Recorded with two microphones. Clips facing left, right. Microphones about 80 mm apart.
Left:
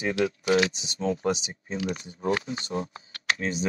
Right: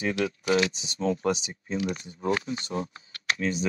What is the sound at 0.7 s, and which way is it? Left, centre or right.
Speech, right.